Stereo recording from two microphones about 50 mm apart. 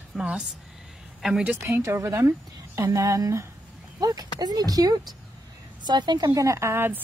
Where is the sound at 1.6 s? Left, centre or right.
Right.